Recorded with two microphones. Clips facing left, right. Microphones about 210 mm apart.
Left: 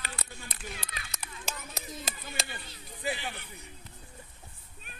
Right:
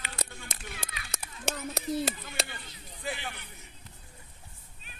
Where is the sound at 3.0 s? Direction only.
5° left (ahead or behind).